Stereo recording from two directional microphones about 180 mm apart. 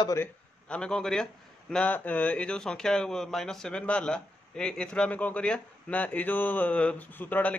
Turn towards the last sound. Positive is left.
turn(degrees=10)  # may be behind; listen again after turning